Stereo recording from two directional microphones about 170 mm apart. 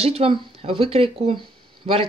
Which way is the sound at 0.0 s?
35° right (ahead or behind).